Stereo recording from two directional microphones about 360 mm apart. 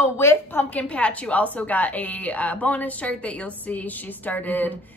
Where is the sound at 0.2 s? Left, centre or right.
Centre.